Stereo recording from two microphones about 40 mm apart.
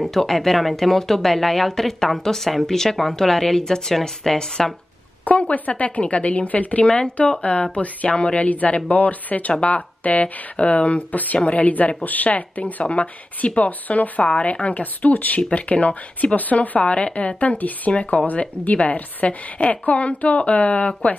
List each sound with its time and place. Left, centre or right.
0.0 s speech: centre
5.3 s a woman's voice: left
6.8 s a woman's voice: left
14.2 s a woman's voice: left
16.8 s a woman's voice: left